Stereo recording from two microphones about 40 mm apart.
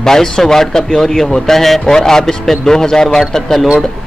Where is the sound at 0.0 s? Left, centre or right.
Centre.